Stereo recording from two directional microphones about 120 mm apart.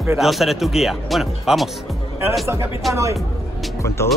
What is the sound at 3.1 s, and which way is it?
Music, centre (ahead or behind).